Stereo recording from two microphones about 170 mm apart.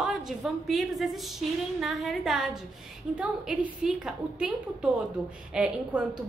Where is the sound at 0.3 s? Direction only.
Centre (ahead or behind).